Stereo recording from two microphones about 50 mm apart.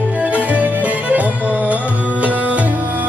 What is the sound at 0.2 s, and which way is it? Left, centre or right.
Music, right.